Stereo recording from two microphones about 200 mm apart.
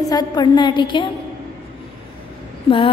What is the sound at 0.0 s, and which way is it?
A woman's voice, 20° left (ahead or behind).